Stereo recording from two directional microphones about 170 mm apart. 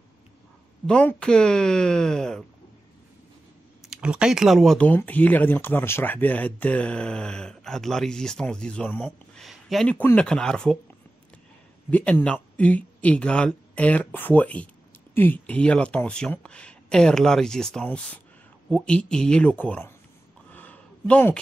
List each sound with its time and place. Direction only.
0.8 s speech: 5° left (ahead or behind)
3.8 s speech: 5° right (ahead or behind)
11.9 s speech: 5° left (ahead or behind)
20.5 s a sound: 10° left (ahead or behind)